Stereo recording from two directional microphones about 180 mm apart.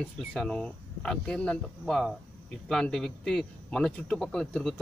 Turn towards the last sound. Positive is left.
turn(degrees=5)  # may be behind; listen again after turning